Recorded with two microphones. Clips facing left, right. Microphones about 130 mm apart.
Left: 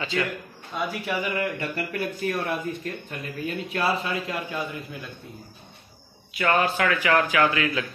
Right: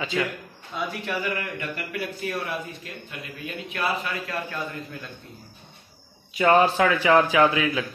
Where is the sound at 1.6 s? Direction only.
40° left (ahead or behind); by 4.6 s 20° left (ahead or behind).